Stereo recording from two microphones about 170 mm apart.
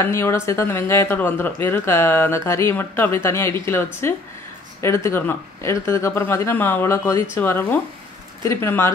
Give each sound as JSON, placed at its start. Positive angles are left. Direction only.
{"t": 0.0, "sound": "speech", "side_deg": 15}